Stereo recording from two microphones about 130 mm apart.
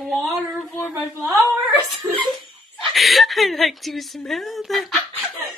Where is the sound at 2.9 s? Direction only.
Centre (ahead or behind).